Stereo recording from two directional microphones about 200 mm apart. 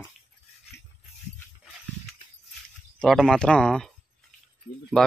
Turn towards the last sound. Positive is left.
turn(degrees=-10)  # may be behind; listen again after turning